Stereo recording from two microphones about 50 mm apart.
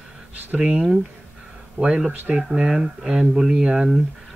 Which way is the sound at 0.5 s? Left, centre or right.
Centre.